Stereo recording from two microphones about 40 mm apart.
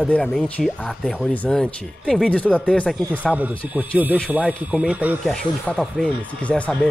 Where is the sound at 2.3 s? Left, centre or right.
Left.